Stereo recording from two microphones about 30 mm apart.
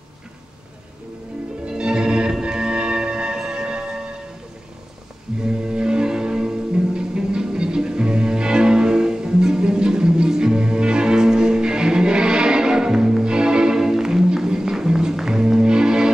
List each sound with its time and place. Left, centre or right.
1.7 s music: right
3.6 s a sound: right
5.4 s music: right
13.2 s music: right
13.7 s music: centre